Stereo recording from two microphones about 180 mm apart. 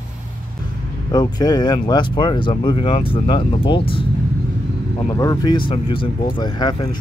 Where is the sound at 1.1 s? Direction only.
20° left (ahead or behind).